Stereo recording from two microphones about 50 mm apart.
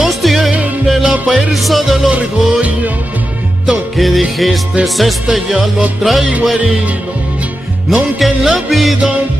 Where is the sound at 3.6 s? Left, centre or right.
Centre.